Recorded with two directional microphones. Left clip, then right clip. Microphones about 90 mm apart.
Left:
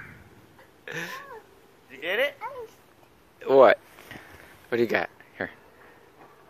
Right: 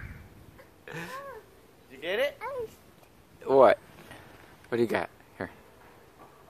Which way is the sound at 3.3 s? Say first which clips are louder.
Left 3 dB; centre (ahead or behind).